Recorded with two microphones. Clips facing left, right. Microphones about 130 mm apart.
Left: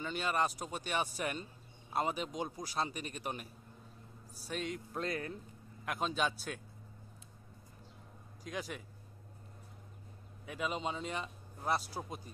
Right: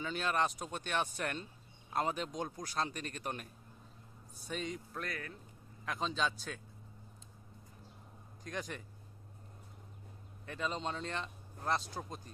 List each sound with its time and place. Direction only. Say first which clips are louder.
0.0 s speech: even; centre (ahead or behind)
4.9 s speech: left 5 dB; 25° left (ahead or behind)
5.9 s speech: left 1 dB; 10° left (ahead or behind)
8.5 s speech: left 1 dB; 5° left (ahead or behind)
10.4 s speech: left 1 dB; 10° left (ahead or behind)